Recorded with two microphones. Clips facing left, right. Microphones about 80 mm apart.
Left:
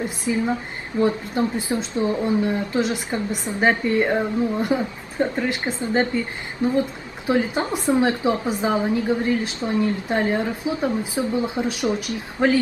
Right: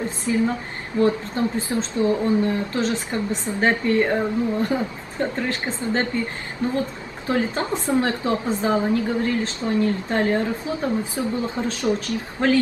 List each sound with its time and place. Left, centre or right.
1.0 s a woman's voice: centre